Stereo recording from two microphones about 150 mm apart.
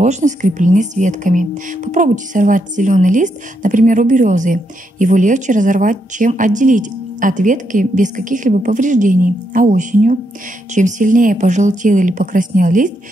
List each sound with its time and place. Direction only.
0.0 s speech: 55° right (ahead or behind)